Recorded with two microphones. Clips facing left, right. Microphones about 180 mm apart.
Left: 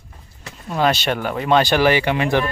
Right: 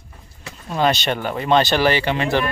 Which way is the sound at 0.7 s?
5° left (ahead or behind).